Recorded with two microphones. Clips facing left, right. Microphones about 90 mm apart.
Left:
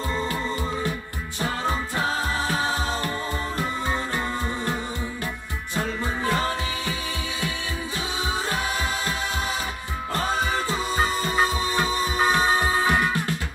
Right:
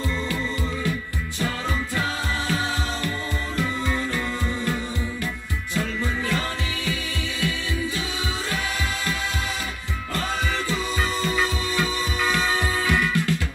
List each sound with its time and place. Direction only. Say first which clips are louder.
1.4 s music: left 1 dB; 35° left (ahead or behind)
5.8 s music: even; 35° left (ahead or behind)
10.1 s music: left 2 dB; 30° left (ahead or behind)